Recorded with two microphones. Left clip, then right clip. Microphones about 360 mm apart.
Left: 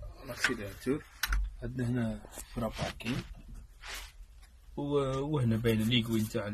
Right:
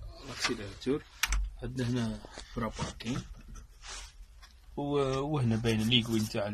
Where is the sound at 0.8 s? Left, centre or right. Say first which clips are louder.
Right 3 dB; centre.